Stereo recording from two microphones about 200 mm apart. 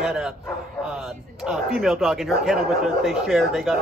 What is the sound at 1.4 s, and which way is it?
Speech, centre (ahead or behind).